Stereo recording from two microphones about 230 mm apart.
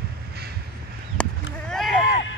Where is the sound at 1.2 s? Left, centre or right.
Centre.